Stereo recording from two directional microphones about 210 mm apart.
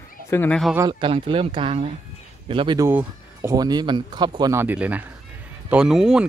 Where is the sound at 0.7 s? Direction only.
20° right (ahead or behind).